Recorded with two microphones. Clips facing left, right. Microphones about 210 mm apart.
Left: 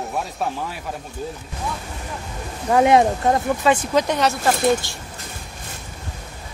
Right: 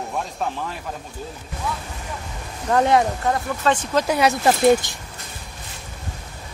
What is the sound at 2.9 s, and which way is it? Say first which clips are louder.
Speech: left 3 dB; 20° left (ahead or behind).